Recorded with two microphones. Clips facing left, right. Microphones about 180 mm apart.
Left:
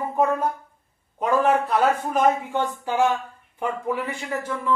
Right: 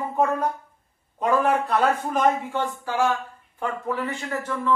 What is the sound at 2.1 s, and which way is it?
A man's voice, 10° left (ahead or behind).